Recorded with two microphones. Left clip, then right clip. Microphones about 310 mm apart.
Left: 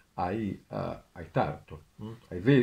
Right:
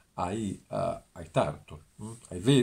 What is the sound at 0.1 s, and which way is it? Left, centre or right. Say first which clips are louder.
Speech: left 1 dB; centre.